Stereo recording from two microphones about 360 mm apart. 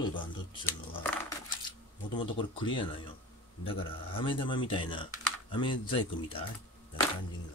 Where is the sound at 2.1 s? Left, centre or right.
Centre.